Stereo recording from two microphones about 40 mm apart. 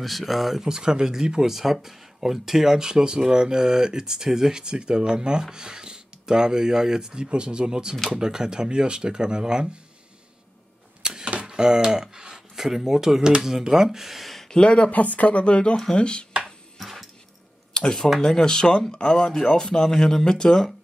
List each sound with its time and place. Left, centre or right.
0.0 s speech: centre
0.6 s speech: centre
11.0 s a sound: centre
11.4 s speech: centre
14.5 s speech: left
14.9 s speech: left
16.8 s a sound: centre
17.7 s speech: centre